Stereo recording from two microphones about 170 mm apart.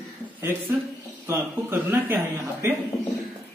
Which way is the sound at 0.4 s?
10° right (ahead or behind).